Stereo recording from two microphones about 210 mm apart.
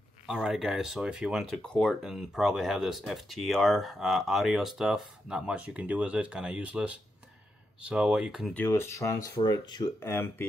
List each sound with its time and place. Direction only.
0.3 s speech: centre (ahead or behind)
8.5 s speech: 10° left (ahead or behind)